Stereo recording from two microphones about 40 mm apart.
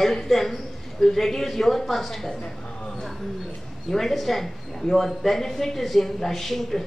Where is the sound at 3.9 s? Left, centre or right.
Centre.